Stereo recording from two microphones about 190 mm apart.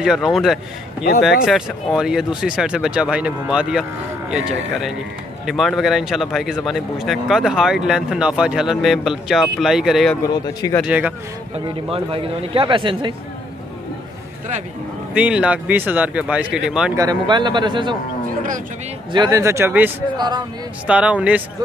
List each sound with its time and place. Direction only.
0.0 s speech: centre (ahead or behind)
10.2 s a man's voice: 20° left (ahead or behind)
10.8 s speech: 10° right (ahead or behind)
11.5 s speech: 30° right (ahead or behind)
15.1 s speech: 5° right (ahead or behind)
16.9 s speech: 20° right (ahead or behind)
19.1 s speech: 20° right (ahead or behind)
20.2 s speech: 20° right (ahead or behind)
20.8 s speech: 5° right (ahead or behind)